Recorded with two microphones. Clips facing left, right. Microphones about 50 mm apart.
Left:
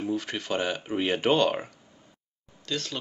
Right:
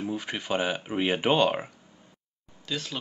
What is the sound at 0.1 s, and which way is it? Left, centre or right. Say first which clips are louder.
Speech: left 1 dB; centre.